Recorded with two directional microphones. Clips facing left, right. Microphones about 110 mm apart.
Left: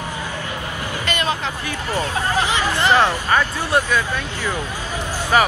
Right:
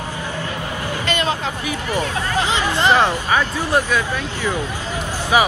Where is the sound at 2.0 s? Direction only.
20° right (ahead or behind).